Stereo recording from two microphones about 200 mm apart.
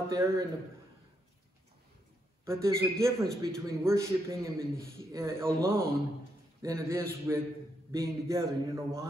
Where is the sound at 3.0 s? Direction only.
15° right (ahead or behind).